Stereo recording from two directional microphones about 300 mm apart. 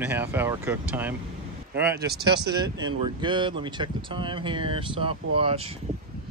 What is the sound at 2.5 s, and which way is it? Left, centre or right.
Speech, centre.